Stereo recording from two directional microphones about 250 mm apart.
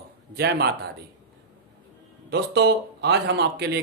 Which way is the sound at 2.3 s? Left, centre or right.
Right.